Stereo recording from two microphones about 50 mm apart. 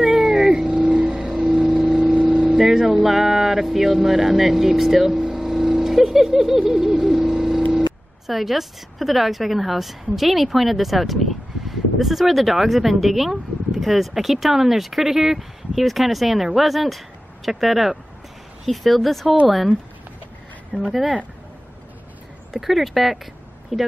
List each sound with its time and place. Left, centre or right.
0.0 s vehicle: centre
2.5 s a woman's voice: centre
5.1 s vehicle: centre
8.3 s a woman's voice: centre
20.7 s speech: centre
22.5 s a woman's voice: centre